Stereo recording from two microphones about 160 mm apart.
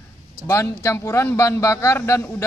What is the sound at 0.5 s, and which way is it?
A man's voice, 15° left (ahead or behind).